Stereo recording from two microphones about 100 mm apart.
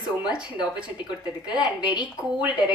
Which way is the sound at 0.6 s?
10° right (ahead or behind).